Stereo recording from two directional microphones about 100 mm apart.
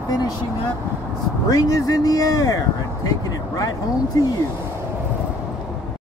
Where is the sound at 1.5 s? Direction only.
40° left (ahead or behind).